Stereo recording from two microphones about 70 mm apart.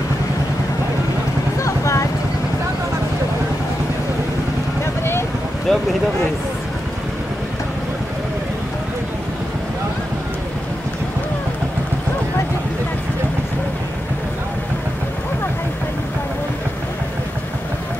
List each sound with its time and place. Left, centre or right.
1.6 s vehicle: left
5.7 s speech: centre